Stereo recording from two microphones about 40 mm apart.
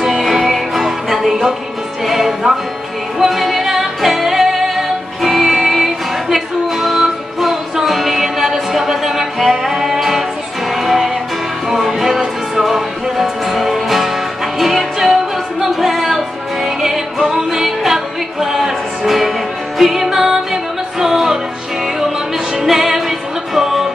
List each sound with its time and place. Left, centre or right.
0.0 s music: centre
22.6 s music: centre